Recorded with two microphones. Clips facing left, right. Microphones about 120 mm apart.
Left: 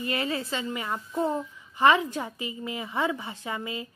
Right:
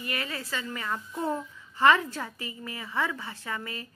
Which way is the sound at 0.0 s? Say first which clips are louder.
Left 6 dB; 25° left (ahead or behind).